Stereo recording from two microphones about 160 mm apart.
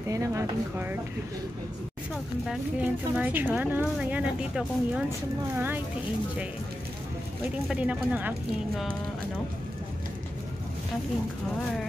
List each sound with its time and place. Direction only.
0.1 s speech: 20° right (ahead or behind)
2.4 s speech: 5° right (ahead or behind)
7.6 s speech: 5° right (ahead or behind)